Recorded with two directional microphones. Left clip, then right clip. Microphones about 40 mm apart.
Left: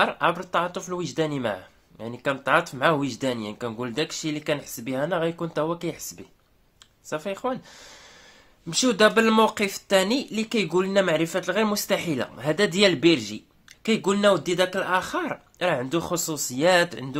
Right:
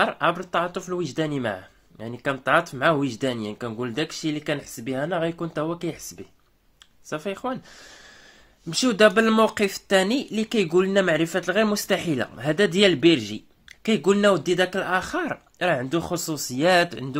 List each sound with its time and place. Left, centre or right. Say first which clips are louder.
0.2 s a man's voice: even; centre
7.1 s speech: even; right
8.6 s speech: right 1 dB; centre
9.5 s speech: right 1 dB; right
12.5 s a man's voice: right 2 dB; centre
13.8 s speech: right 1 dB; right